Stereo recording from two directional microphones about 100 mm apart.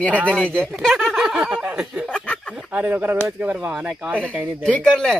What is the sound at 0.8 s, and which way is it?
Speech, centre (ahead or behind).